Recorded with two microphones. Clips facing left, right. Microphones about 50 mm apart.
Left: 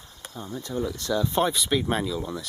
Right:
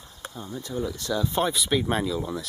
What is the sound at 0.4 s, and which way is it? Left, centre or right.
Speech, centre.